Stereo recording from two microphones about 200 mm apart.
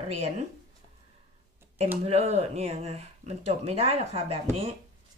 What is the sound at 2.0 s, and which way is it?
Speech, 30° right (ahead or behind).